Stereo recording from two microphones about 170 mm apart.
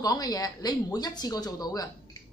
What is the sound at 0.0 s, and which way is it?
Speech, 20° left (ahead or behind).